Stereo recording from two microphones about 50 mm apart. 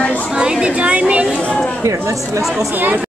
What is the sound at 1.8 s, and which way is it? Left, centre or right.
Speech, right.